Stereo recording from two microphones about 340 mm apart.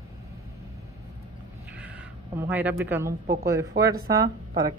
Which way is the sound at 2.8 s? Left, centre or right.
Centre.